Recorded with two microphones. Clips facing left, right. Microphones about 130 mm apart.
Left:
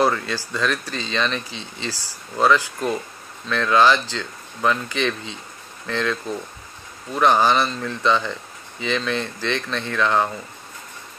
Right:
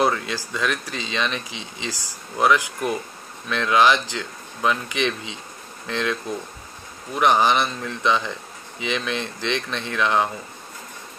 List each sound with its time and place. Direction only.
0.0 s speech: 15° right (ahead or behind)